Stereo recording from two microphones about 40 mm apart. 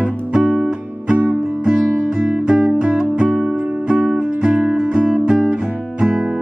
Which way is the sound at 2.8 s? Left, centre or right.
Right.